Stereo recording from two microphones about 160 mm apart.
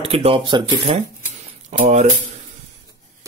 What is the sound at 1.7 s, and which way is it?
Speech, 45° right (ahead or behind).